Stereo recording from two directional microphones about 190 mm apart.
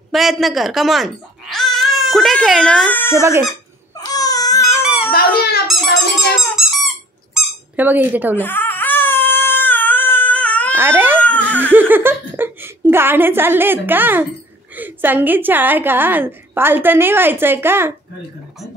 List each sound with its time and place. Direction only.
0.1 s speech: centre (ahead or behind)
3.2 s a woman's voice: 15° right (ahead or behind)
3.9 s crying: 20° left (ahead or behind)
5.1 s squeak: 55° left (ahead or behind)
5.7 s squeak: centre (ahead or behind)
8.4 s baby cry: 10° left (ahead or behind)
10.7 s babbling: 10° right (ahead or behind)
11.2 s giggle: 10° left (ahead or behind)
11.6 s a woman's voice: 10° right (ahead or behind)